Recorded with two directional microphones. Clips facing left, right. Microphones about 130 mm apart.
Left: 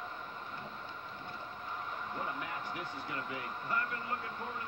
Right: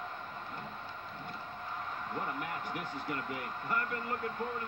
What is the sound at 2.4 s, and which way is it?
Speech, 50° right (ahead or behind).